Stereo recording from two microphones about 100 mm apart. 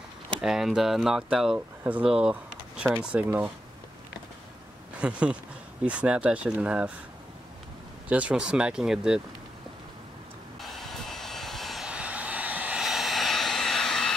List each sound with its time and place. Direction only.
0.4 s speech: 5° right (ahead or behind)
5.0 s speech: 10° right (ahead or behind)
8.1 s speech: 15° right (ahead or behind)
10.6 s vehicle: centre (ahead or behind)
11.9 s hair dryer: 15° right (ahead or behind)
12.8 s hair dryer: centre (ahead or behind)